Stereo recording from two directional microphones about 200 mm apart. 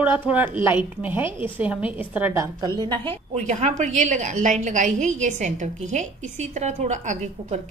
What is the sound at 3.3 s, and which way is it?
A woman's voice, 35° right (ahead or behind).